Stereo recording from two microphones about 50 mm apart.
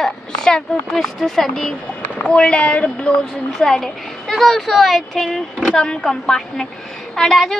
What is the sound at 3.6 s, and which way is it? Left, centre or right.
Speech, centre.